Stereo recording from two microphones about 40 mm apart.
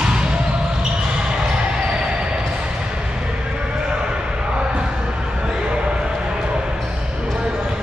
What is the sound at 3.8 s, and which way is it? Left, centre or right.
Basketball bounce, right.